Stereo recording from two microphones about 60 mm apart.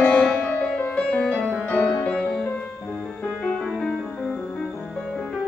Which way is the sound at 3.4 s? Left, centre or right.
Centre.